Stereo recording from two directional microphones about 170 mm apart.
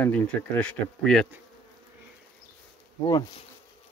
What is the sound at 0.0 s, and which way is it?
Speech, 10° left (ahead or behind).